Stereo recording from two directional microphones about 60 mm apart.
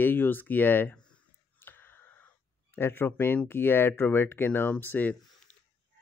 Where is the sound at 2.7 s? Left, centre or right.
Left.